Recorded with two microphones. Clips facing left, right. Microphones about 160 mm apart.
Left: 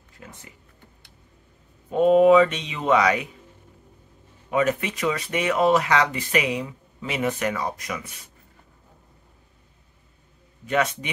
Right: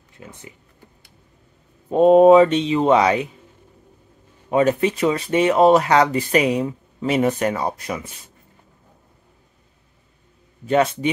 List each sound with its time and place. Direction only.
0.2 s speech: 20° right (ahead or behind)
1.9 s speech: 35° right (ahead or behind)
4.5 s speech: 30° right (ahead or behind)
10.7 s speech: 30° right (ahead or behind)